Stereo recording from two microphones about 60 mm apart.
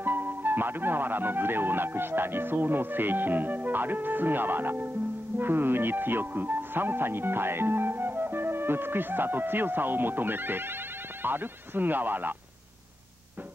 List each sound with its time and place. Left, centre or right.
0.0 s speech: right